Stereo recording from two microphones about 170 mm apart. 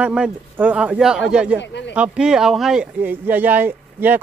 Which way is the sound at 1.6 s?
90° left.